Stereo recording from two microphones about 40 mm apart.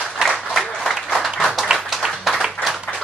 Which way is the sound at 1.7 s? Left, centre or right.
Centre.